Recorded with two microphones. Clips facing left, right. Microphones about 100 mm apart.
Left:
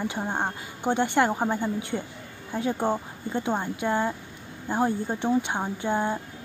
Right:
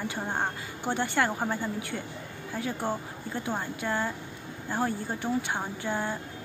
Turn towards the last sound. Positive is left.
turn(degrees=20)  # may be behind; listen again after turning